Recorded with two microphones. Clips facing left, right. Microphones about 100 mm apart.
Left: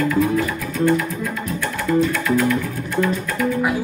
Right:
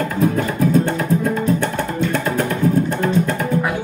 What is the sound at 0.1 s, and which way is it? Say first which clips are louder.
Music: even; 35° right (ahead or behind).